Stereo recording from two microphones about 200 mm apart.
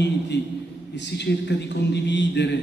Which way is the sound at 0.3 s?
60° left (ahead or behind).